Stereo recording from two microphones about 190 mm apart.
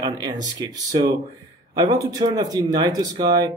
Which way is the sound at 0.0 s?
20° right (ahead or behind).